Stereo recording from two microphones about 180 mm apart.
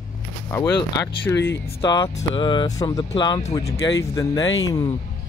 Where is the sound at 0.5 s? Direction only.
15° left (ahead or behind).